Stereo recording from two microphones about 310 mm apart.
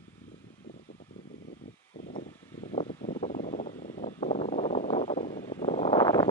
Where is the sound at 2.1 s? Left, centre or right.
Centre.